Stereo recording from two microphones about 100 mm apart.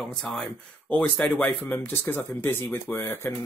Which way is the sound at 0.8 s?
15° left (ahead or behind).